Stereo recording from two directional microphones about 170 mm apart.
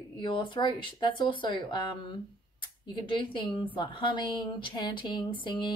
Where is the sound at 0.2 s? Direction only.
30° left (ahead or behind).